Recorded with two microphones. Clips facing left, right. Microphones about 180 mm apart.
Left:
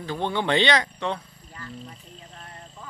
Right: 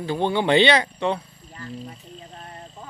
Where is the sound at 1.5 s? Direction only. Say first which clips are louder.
Right 4 dB; 30° right (ahead or behind).